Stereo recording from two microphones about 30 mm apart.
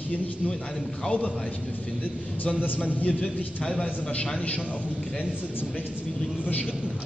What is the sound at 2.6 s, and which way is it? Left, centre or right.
Speech, left.